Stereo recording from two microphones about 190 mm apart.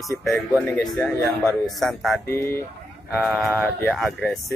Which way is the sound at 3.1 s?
5° right (ahead or behind).